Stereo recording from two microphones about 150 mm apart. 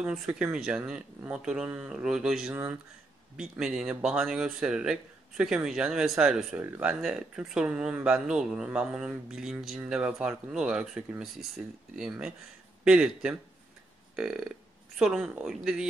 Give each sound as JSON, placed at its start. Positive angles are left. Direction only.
{"t": 0.0, "sound": "speech", "side_deg": -5}